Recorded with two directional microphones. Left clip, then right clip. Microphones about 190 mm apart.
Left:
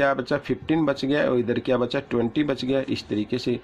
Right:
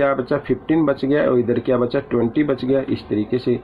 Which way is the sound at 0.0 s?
35° left (ahead or behind).